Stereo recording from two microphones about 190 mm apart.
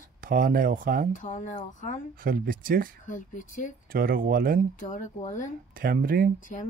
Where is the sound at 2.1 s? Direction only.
50° right (ahead or behind).